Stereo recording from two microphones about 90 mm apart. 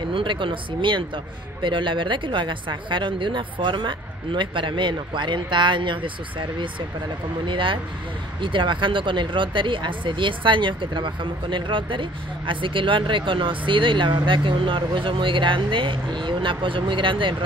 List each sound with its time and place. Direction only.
0.1 s speech: 70° right (ahead or behind)